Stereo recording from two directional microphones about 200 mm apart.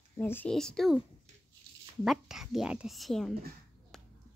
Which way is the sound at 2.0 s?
Centre (ahead or behind).